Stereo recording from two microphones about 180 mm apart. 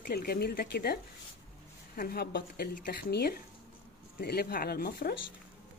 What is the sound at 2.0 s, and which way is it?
A woman's voice, 60° left (ahead or behind).